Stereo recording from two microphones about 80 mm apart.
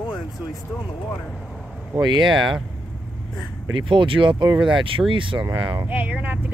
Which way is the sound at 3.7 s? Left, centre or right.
Right.